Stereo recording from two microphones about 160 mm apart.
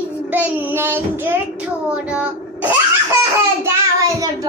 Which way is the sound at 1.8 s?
5° right (ahead or behind).